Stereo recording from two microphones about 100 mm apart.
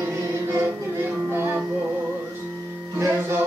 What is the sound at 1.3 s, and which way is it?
Music, 20° right (ahead or behind).